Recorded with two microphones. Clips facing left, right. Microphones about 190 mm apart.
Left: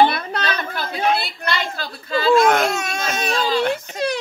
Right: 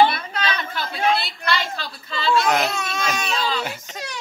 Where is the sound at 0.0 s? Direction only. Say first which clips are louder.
Left 1 dB; 50° left (ahead or behind).